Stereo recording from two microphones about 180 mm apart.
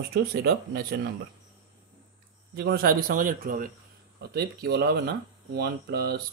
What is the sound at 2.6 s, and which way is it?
A man's voice, 60° right (ahead or behind).